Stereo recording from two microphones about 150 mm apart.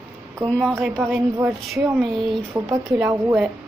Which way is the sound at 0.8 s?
Centre (ahead or behind).